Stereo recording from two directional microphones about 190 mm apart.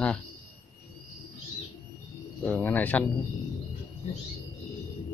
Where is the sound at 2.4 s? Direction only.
10° left (ahead or behind).